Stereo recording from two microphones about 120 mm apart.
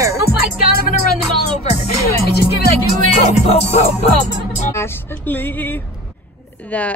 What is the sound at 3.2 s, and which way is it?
Music, 60° left (ahead or behind).